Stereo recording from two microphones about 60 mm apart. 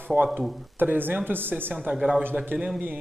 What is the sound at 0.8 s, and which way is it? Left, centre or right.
Speech, right.